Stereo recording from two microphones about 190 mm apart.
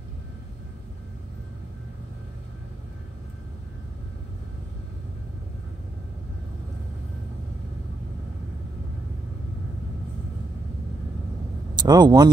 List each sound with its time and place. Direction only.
11.7 s a man's voice: 20° right (ahead or behind)